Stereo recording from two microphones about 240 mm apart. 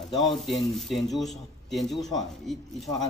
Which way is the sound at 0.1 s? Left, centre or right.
Centre.